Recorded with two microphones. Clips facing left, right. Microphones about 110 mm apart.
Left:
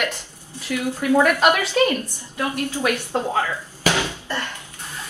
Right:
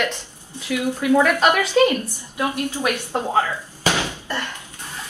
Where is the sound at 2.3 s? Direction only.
20° right (ahead or behind).